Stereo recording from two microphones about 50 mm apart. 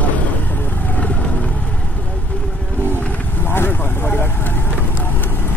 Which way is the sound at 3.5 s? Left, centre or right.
Left.